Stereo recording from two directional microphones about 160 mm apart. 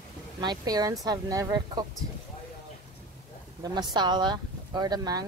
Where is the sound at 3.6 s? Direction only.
25° right (ahead or behind).